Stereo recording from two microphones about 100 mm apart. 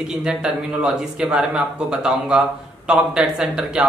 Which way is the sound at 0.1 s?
5° right (ahead or behind).